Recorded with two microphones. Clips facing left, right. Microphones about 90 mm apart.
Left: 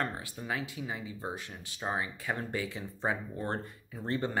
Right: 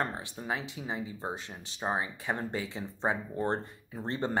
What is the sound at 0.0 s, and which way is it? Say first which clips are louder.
Speech: right 1 dB; 25° right (ahead or behind).